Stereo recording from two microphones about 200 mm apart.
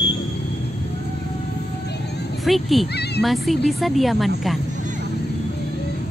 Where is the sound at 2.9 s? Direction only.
55° left (ahead or behind).